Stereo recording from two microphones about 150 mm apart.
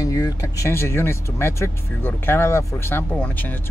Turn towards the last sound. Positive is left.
turn(degrees=10)  # may be behind; listen again after turning